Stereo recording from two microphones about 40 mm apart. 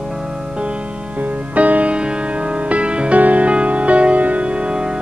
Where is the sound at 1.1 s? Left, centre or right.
Right.